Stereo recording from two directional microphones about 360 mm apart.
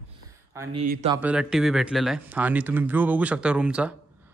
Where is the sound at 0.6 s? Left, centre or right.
Centre.